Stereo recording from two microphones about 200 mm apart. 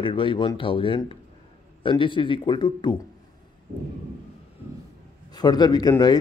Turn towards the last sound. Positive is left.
turn(degrees=20)  # may be behind; listen again after turning